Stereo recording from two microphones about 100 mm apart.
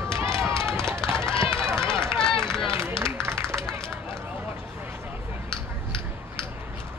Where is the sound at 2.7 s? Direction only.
25° right (ahead or behind).